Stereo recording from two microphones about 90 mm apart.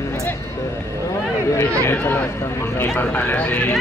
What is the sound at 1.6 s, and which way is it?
Speech, 30° left (ahead or behind).